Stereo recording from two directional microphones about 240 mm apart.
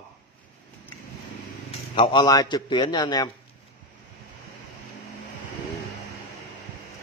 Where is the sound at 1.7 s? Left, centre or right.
Left.